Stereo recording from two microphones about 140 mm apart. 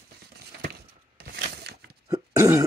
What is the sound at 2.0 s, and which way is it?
Cough, 25° right (ahead or behind).